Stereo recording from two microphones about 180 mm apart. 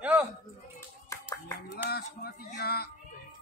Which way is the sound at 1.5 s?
60° left (ahead or behind).